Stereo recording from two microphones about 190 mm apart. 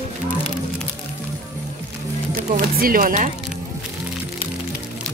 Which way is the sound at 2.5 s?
50° right (ahead or behind).